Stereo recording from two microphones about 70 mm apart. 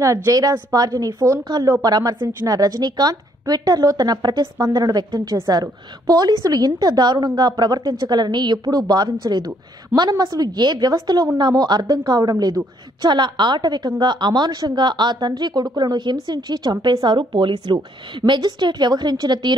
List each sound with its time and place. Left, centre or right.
0.0 s a woman's voice: right
9.9 s a woman's voice: right
11.3 s a woman's voice: right